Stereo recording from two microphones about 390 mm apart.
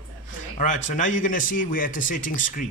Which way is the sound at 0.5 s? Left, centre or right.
Centre.